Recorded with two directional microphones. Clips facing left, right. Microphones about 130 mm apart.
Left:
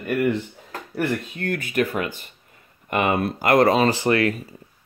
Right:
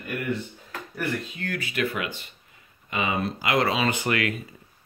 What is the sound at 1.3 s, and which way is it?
Speech, 50° left (ahead or behind).